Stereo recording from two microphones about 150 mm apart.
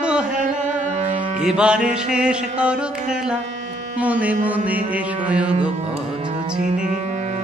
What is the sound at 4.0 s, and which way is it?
Music, 10° right (ahead or behind).